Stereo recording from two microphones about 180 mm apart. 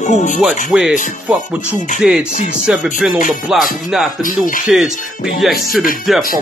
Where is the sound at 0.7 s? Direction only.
5° right (ahead or behind).